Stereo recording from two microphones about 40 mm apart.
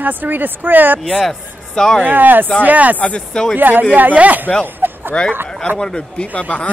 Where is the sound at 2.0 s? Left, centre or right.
Right.